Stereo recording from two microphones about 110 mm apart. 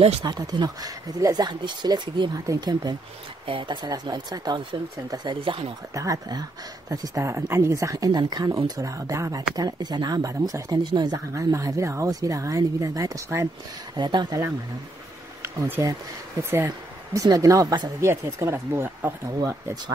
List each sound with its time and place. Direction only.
0.2 s speech: 40° right (ahead or behind)
3.4 s speech: 50° right (ahead or behind)
5.9 s speech: 30° right (ahead or behind)
11.3 s speech: 25° right (ahead or behind)
13.9 s speech: 40° right (ahead or behind)
15.4 s speech: 25° right (ahead or behind)